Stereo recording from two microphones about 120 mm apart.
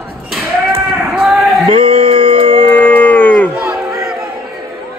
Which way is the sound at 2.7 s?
15° left (ahead or behind).